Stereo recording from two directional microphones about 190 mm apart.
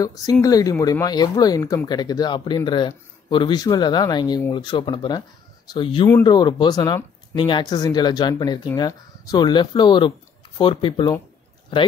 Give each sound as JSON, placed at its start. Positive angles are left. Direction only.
{"t": 0.0, "sound": "speech", "side_deg": 20}